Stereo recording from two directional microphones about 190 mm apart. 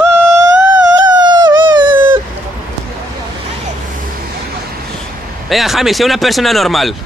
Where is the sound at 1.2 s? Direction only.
20° right (ahead or behind).